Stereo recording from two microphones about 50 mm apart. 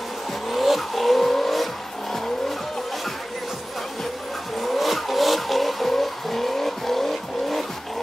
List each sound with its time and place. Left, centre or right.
0.5 s vehicle: centre
4.6 s vehicle: centre